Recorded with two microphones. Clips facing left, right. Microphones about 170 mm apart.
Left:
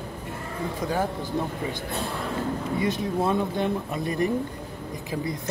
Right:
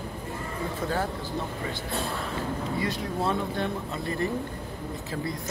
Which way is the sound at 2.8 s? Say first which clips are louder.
Left 5 dB; 20° left (ahead or behind).